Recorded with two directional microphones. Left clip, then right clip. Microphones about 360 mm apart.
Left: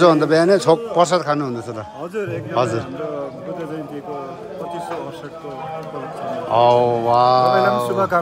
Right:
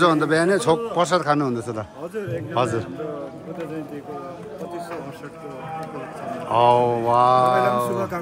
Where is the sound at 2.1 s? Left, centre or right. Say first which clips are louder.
Left 4 dB; centre.